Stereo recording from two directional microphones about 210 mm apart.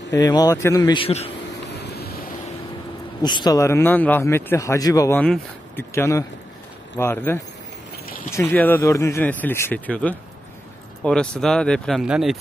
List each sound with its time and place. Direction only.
0.1 s speech: 15° left (ahead or behind)
1.7 s vehicle: 50° left (ahead or behind)
3.2 s speech: 20° left (ahead or behind); by 12.4 s centre (ahead or behind)